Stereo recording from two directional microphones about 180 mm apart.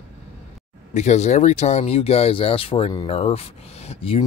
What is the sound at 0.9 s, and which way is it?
Speech, 40° left (ahead or behind).